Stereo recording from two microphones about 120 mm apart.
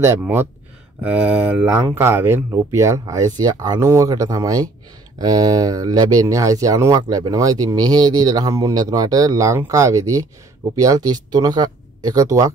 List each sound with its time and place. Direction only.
0.0 s speech: 20° right (ahead or behind)